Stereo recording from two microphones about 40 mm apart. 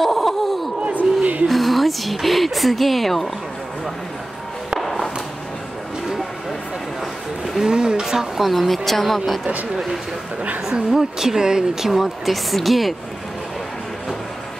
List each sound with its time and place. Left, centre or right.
0.0 s a sound: centre
0.9 s a sound: right
1.5 s speech: centre
4.7 s music: centre
7.6 s speech: centre
8.4 s a woman's voice: centre
10.9 s speech: centre